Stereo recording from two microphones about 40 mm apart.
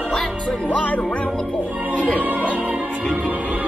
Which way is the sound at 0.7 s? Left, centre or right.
Left.